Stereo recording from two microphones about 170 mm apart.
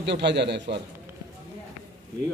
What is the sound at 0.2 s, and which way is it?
Speech, 90° right.